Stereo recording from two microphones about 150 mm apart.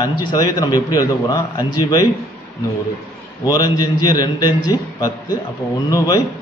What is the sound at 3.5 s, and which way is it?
A man's voice, 25° left (ahead or behind).